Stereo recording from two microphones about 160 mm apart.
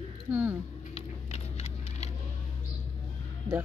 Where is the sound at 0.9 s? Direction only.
40° left (ahead or behind).